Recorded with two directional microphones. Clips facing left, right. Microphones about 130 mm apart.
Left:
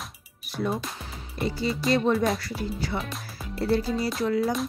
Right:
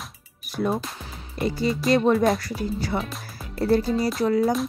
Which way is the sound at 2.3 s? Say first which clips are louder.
Right 4 dB; 40° right (ahead or behind).